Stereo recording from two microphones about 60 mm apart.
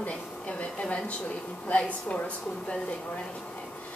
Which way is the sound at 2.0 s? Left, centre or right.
Left.